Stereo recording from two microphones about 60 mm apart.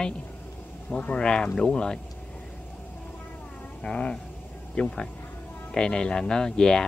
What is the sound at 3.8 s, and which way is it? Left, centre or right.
Speech, centre.